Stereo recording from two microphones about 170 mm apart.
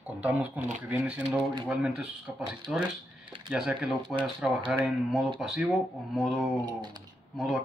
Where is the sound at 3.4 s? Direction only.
5° right (ahead or behind).